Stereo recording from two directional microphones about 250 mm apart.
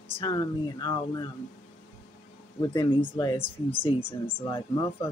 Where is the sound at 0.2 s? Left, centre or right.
Centre.